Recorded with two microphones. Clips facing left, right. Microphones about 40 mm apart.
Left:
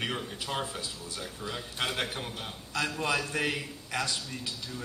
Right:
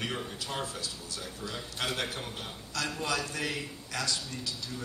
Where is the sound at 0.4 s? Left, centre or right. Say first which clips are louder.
Left 2 dB; centre.